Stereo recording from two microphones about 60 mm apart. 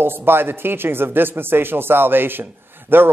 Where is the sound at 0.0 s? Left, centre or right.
Right.